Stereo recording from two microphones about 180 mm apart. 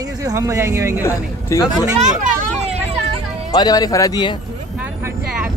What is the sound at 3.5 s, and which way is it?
Speech, 20° left (ahead or behind).